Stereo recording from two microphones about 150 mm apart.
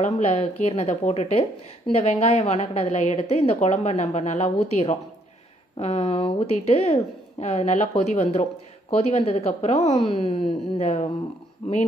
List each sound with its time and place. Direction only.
0.0 s a woman's voice: 45° left (ahead or behind)